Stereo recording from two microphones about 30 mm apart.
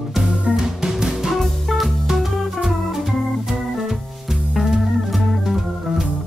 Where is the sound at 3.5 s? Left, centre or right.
Centre.